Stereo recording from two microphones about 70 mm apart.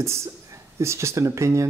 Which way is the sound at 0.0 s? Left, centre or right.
Right.